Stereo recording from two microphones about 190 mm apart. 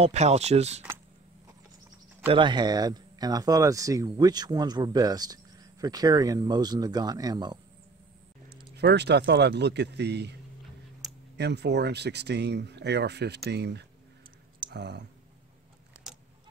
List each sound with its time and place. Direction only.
0.0 s speech: 35° right (ahead or behind)
2.2 s speech: 25° right (ahead or behind)
8.7 s speech: 60° right (ahead or behind)
11.0 s a sound: centre (ahead or behind)
11.3 s speech: 60° right (ahead or behind)